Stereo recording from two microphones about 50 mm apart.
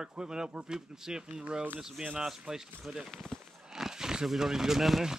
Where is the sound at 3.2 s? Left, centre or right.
Centre.